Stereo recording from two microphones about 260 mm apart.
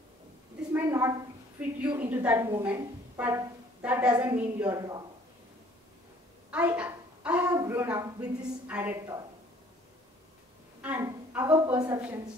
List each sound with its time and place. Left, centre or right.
0.7 s a sound: centre
1.6 s a woman's voice: centre
6.5 s a woman's voice: centre
10.8 s a woman's voice: centre